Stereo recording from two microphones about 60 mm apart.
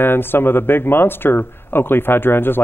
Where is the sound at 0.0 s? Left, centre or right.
Left.